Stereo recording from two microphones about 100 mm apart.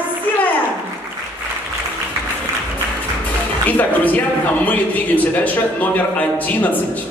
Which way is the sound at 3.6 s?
15° left (ahead or behind).